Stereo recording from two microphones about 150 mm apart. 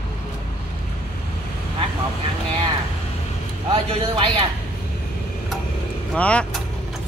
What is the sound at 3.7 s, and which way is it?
Speech, 40° right (ahead or behind).